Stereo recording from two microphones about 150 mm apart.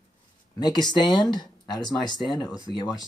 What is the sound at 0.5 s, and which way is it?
Speech, 30° left (ahead or behind).